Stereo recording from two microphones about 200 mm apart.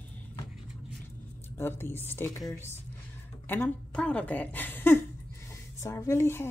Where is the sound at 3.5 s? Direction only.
5° left (ahead or behind).